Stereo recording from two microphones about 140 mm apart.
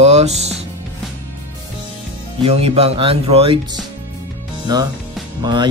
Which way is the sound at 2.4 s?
45° right (ahead or behind).